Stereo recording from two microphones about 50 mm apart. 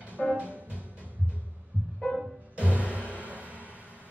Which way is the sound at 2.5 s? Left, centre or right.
Right.